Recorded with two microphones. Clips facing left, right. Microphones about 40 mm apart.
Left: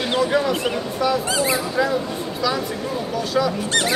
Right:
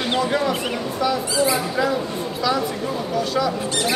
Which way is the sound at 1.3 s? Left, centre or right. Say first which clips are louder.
Right 1 dB; left.